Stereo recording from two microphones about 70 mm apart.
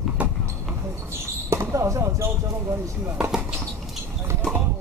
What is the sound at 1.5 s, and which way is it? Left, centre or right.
Speech, right.